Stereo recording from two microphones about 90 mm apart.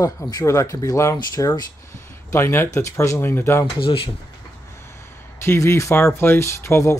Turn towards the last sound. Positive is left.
turn(degrees=35)  # may be behind; listen again after turning